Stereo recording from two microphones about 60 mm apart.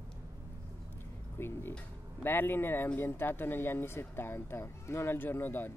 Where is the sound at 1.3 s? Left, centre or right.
Left.